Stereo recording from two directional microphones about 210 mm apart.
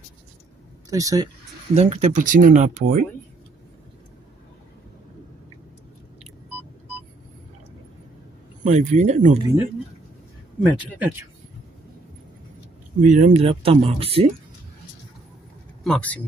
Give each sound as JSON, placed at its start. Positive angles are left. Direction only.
{"t": 0.8, "sound": "speech", "side_deg": -15}
{"t": 1.8, "sound": "speech", "side_deg": -30}
{"t": 8.6, "sound": "speech", "side_deg": -35}
{"t": 10.6, "sound": "speech", "side_deg": -5}
{"t": 13.0, "sound": "speech", "side_deg": -35}
{"t": 15.8, "sound": "speech", "side_deg": 5}